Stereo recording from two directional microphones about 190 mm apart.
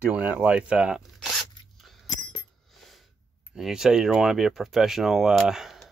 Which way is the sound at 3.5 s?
5° right (ahead or behind).